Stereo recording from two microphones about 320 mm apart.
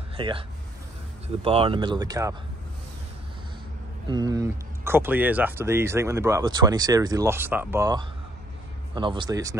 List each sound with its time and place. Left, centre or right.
0.2 s speech: centre
4.1 s speech: centre